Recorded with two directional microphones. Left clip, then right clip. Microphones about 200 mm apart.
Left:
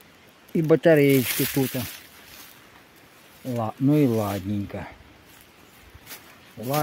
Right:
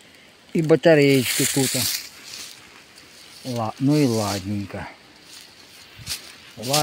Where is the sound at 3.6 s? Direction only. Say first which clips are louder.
Right 1 dB; centre (ahead or behind).